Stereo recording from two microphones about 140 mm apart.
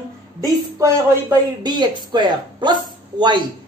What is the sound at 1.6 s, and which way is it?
Speech, 30° right (ahead or behind).